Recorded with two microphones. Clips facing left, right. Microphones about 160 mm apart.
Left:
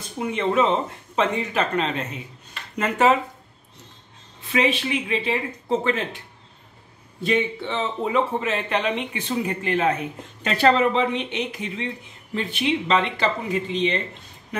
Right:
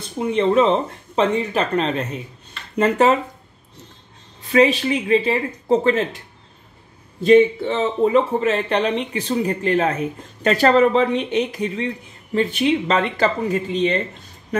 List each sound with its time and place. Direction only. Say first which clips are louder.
0.3 s speech: right 5 dB; 30° right (ahead or behind)
4.5 s speech: right 6 dB; 40° right (ahead or behind)
7.2 s speech: right 10 dB; 45° right (ahead or behind)